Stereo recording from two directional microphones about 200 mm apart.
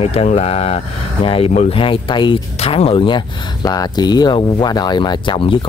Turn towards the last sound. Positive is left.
turn(degrees=25)  # may be behind; listen again after turning